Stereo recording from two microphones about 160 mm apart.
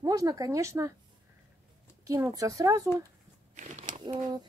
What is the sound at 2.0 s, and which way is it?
Speech, 20° right (ahead or behind).